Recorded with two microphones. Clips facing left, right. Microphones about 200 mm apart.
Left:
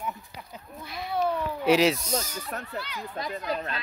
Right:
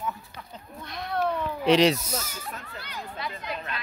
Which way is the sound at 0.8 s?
5° left (ahead or behind).